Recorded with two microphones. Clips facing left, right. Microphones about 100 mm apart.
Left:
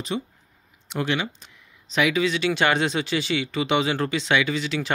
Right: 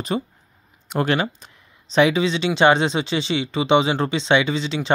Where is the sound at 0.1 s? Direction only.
55° right (ahead or behind).